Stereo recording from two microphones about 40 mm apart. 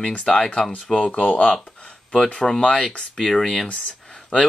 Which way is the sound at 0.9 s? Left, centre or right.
Left.